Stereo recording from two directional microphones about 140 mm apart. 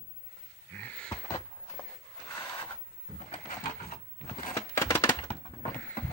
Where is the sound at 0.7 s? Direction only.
10° left (ahead or behind).